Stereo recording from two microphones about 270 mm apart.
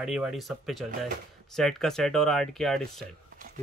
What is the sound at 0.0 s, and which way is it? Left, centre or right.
Speech, centre.